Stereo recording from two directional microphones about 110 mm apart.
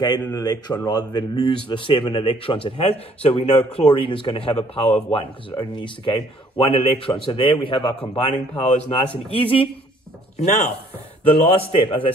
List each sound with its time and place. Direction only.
0.3 s speech: 35° left (ahead or behind); by 3.8 s 75° left (ahead or behind)
3.9 s speech: 50° left (ahead or behind); by 4.9 s 65° left (ahead or behind)
5.6 s speech: 45° left (ahead or behind)
8.3 s speech: 85° left
9.3 s a man's voice: 55° left (ahead or behind)
10.4 s speech: 90° left
11.3 s a man's voice: 60° left (ahead or behind)